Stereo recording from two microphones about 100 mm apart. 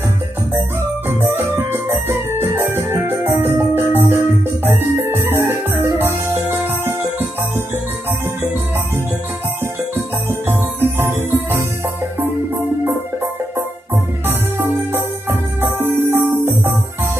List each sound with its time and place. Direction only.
1.0 s music: 25° right (ahead or behind)
10.8 s music: 25° right (ahead or behind)
15.2 s music: 25° right (ahead or behind)